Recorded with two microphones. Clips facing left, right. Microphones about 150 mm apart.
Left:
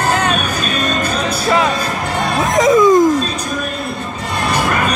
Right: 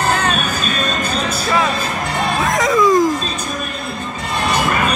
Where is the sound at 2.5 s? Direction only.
20° left (ahead or behind).